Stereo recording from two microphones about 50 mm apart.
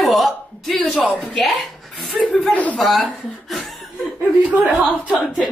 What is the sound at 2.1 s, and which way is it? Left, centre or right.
Chuckle, centre.